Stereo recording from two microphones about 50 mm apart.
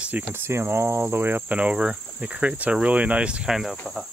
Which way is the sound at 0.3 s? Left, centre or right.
Right.